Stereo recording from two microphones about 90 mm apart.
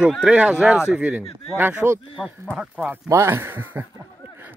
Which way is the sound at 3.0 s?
30° right (ahead or behind).